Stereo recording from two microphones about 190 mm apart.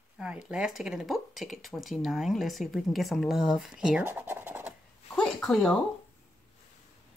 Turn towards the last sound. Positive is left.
turn(degrees=0)  # may be behind; listen again after turning